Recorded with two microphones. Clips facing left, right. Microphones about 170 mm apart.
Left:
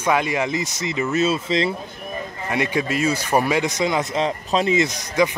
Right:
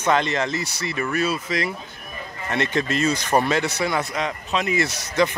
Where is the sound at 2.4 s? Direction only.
10° left (ahead or behind).